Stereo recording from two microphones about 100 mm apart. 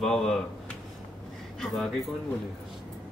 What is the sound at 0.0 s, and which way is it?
Speech, 5° left (ahead or behind).